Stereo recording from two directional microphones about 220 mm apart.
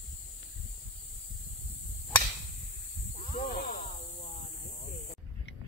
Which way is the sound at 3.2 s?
35° left (ahead or behind).